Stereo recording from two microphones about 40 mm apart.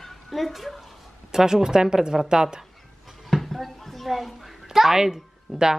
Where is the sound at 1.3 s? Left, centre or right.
Centre.